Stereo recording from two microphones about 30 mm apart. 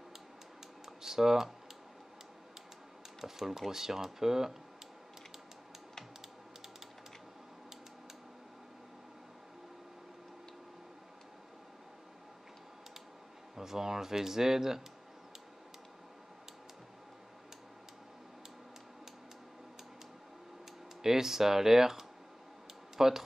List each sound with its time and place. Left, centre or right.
0.8 s speech: centre
3.2 s speech: centre
13.6 s speech: centre
21.0 s speech: centre